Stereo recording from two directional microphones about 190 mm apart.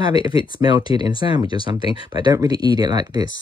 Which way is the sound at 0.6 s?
20° right (ahead or behind).